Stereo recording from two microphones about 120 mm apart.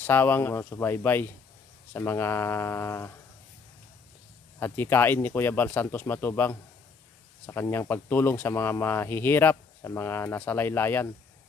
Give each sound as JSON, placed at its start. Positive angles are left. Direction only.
{"t": 0.0, "sound": "speech", "side_deg": 20}
{"t": 4.6, "sound": "speech", "side_deg": 20}
{"t": 7.6, "sound": "speech", "side_deg": 30}
{"t": 7.9, "sound": "speech", "side_deg": 15}